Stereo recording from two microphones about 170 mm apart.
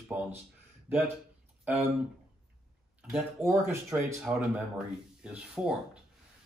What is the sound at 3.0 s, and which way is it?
Speech, centre (ahead or behind).